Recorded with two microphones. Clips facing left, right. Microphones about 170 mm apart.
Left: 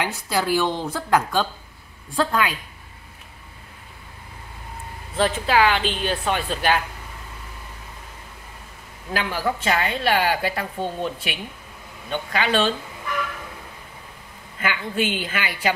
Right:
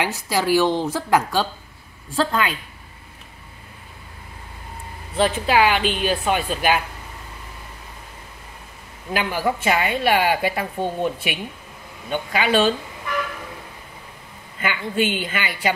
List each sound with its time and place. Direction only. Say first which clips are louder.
0.0 s a woman's voice: right 2 dB; 5° right (ahead or behind)
5.1 s a woman's voice: right 1 dB; 15° right (ahead or behind)
9.1 s a woman's voice: right 2 dB; 15° right (ahead or behind)
14.6 s a woman's voice: right 2 dB; centre (ahead or behind)